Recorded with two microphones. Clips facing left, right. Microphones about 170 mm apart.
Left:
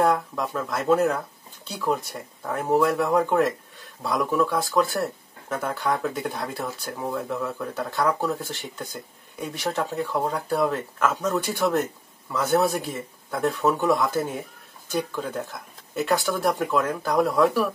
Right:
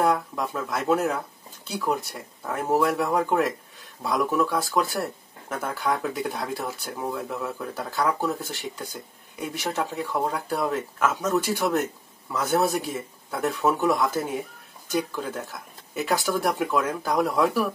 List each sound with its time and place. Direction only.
0.0 s speech: centre (ahead or behind)